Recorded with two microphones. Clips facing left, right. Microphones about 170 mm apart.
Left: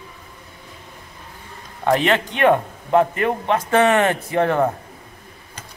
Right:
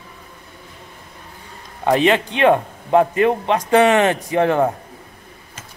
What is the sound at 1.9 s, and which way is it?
A man's voice, 15° right (ahead or behind).